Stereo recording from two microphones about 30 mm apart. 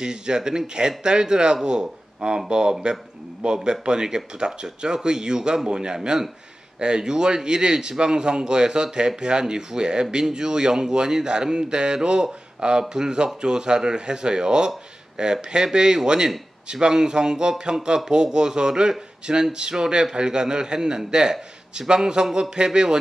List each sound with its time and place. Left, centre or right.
0.0 s a man's voice: right